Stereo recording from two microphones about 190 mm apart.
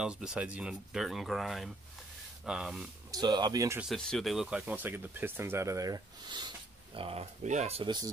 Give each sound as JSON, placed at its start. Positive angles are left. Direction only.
{"t": 0.0, "sound": "speech", "side_deg": -5}
{"t": 3.1, "sound": "speech", "side_deg": -20}
{"t": 3.9, "sound": "speech", "side_deg": 0}